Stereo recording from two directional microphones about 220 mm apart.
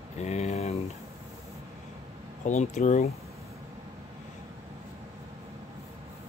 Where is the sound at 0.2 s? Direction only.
30° left (ahead or behind).